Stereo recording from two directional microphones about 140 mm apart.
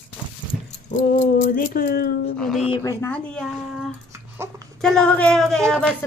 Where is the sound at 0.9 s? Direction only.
60° left (ahead or behind); by 2.4 s 90° left.